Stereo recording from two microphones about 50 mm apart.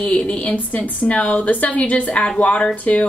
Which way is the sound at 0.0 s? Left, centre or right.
Left.